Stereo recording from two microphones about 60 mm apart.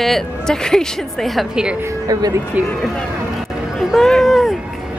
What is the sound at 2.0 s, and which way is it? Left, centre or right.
Speech, right.